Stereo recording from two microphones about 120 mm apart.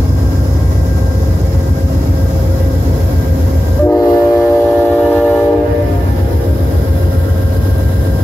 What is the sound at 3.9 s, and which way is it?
Train, 25° left (ahead or behind).